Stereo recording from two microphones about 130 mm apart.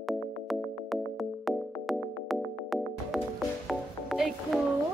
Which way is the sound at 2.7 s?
Centre (ahead or behind).